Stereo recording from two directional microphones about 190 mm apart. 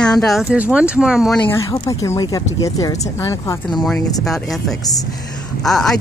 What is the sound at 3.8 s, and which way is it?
A woman's voice, 5° left (ahead or behind).